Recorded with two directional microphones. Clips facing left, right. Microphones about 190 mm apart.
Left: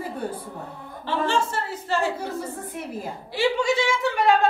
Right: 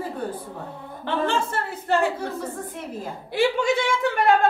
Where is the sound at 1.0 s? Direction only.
55° right (ahead or behind).